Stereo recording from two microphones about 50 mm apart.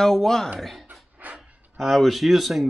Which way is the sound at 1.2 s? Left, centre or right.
Right.